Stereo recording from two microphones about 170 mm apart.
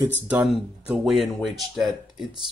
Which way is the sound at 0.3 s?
5° right (ahead or behind).